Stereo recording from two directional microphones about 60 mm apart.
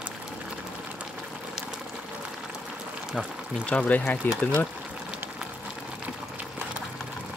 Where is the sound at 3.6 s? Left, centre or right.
Left.